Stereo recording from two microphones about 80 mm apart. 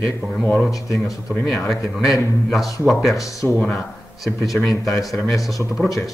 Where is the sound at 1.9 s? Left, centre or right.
Centre.